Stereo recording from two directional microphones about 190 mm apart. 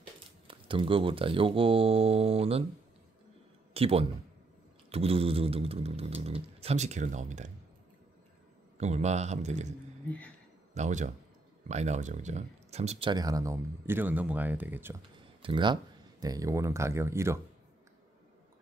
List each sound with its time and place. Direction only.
0.5 s speech: 25° right (ahead or behind)
3.7 s a man's voice: 30° right (ahead or behind)
8.7 s speech: 35° right (ahead or behind)
10.7 s speech: 40° right (ahead or behind)
13.1 s speech: 20° right (ahead or behind)
15.4 s speech: 25° right (ahead or behind)